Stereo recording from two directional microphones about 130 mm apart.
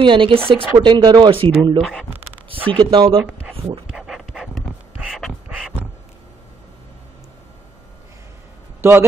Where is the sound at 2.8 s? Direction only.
45° right (ahead or behind).